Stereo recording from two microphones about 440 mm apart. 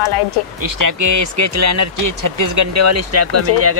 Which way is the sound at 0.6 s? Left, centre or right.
Right.